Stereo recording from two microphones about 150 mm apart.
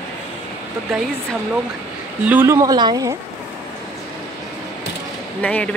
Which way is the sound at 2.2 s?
15° right (ahead or behind).